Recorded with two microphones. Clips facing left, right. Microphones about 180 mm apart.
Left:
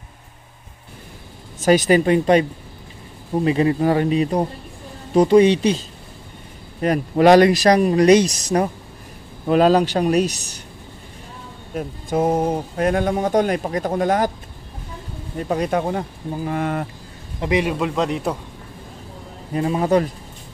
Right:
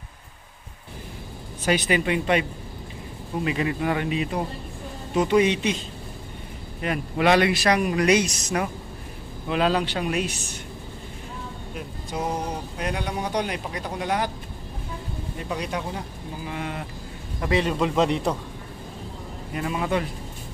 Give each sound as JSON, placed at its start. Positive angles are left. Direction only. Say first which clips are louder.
{"t": 1.6, "sound": "speech", "louder": "left 8 dB", "side_deg": 40}
{"t": 3.4, "sound": "speech", "louder": "left 8 dB", "side_deg": 35}
{"t": 11.7, "sound": "speech", "louder": "left 11 dB", "side_deg": 50}
{"t": 15.4, "sound": "speech", "louder": "left 9 dB", "side_deg": 45}
{"t": 17.4, "sound": "a man's voice", "louder": "left 3 dB", "side_deg": 15}
{"t": 17.7, "sound": "a man's voice", "louder": "even", "side_deg": 0}
{"t": 19.5, "sound": "speech", "louder": "left 8 dB", "side_deg": 35}